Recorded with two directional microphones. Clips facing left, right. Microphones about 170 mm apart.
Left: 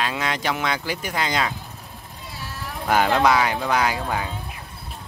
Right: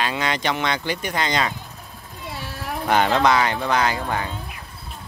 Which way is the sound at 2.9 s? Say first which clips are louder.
Even; 5° left (ahead or behind).